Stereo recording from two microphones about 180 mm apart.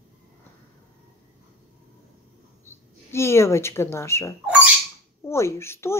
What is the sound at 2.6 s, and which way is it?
Speech, 15° left (ahead or behind).